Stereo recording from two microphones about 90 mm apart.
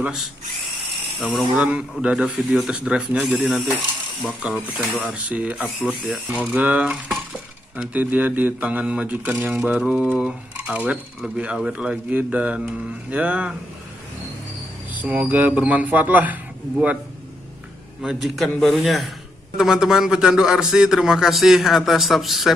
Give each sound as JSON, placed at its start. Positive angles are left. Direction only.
{"t": 1.2, "sound": "a man's voice", "side_deg": 0}
{"t": 1.6, "sound": "speech", "side_deg": -15}
{"t": 11.3, "sound": "speech", "side_deg": -10}
{"t": 15.0, "sound": "speech", "side_deg": -15}
{"t": 18.0, "sound": "a man's voice", "side_deg": 0}